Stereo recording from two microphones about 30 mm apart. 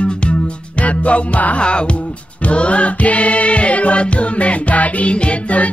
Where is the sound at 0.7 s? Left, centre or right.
Left.